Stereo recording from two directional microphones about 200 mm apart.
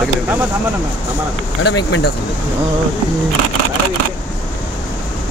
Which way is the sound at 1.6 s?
60° left (ahead or behind).